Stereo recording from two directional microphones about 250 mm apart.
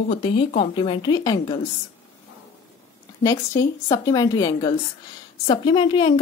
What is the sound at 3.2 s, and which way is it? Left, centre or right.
Speech, centre.